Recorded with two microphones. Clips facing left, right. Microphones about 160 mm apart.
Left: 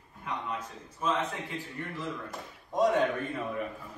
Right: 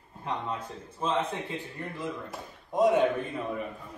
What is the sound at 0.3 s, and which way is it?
A man's voice, 30° right (ahead or behind).